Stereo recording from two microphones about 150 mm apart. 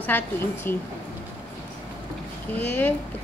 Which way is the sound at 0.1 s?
15° left (ahead or behind).